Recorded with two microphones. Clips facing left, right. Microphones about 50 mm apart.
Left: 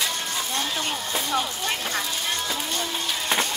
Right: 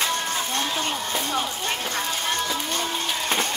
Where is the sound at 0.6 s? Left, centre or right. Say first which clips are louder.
Right 2 dB; right.